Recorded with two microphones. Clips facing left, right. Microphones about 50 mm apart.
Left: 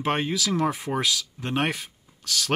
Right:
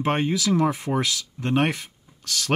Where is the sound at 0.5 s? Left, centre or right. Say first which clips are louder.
Right 3 dB; centre.